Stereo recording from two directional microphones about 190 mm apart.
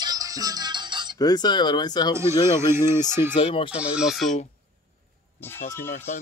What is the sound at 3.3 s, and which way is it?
Speech, 25° left (ahead or behind).